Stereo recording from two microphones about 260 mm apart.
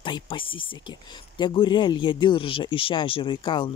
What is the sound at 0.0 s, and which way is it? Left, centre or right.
Speech, centre.